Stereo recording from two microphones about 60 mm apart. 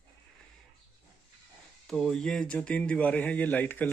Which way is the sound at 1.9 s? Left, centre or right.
Centre.